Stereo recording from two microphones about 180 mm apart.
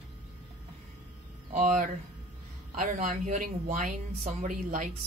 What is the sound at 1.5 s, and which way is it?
Speech, 45° right (ahead or behind).